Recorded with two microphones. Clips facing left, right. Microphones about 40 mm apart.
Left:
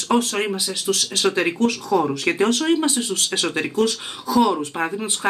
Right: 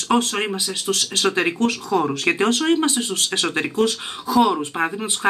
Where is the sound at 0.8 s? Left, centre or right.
Right.